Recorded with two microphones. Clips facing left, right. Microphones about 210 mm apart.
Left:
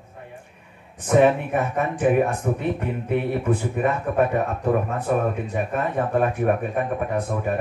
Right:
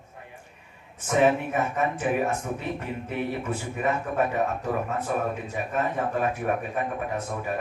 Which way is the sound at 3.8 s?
55° left (ahead or behind).